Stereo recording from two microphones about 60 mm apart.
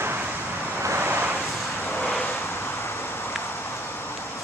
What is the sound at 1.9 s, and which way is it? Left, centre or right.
Vehicle, left.